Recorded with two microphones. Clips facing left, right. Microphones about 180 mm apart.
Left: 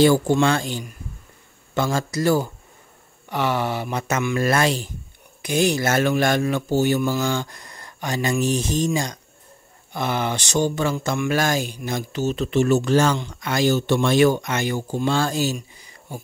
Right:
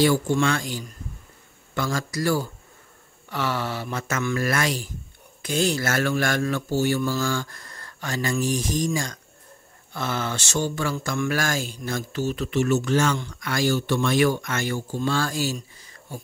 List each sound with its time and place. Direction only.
0.4 s speech: 30° left (ahead or behind)
5.4 s speech: 15° left (ahead or behind); by 13.2 s 35° left (ahead or behind)
13.2 s speech: 20° left (ahead or behind)
15.5 s a sound: 15° left (ahead or behind)